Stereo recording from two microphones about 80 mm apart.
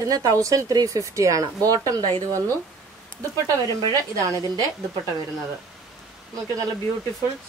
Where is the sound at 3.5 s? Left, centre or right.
Right.